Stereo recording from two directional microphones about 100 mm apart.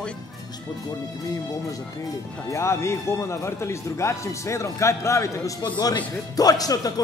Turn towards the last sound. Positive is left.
turn(degrees=40)  # may be behind; listen again after turning